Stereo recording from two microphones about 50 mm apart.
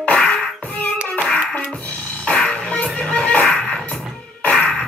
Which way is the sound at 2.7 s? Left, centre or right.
Left.